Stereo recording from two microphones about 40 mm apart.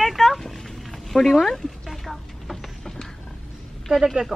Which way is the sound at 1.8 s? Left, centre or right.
Centre.